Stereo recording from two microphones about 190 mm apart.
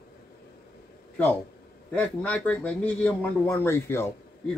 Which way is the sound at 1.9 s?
10° left (ahead or behind).